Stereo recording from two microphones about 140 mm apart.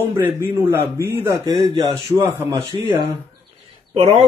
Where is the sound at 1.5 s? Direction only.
35° right (ahead or behind).